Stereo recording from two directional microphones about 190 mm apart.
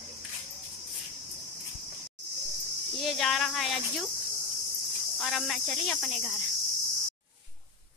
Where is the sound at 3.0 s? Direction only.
Centre (ahead or behind).